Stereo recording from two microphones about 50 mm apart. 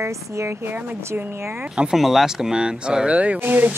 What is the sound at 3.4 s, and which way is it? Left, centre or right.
Speech, right.